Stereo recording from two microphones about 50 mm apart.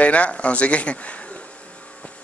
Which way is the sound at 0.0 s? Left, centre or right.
Left.